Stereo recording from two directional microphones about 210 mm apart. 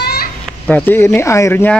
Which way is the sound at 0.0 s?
45° left (ahead or behind).